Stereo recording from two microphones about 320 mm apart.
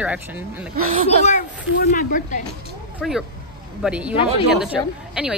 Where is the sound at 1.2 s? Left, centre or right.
Left.